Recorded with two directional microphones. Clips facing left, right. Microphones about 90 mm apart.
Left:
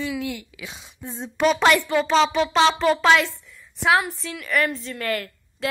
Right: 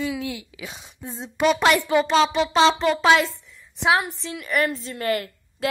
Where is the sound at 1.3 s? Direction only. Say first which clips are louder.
Left 1 dB; 5° right (ahead or behind).